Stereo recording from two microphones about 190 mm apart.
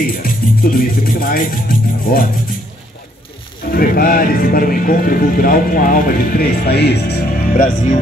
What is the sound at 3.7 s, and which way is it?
Speech, 50° left (ahead or behind).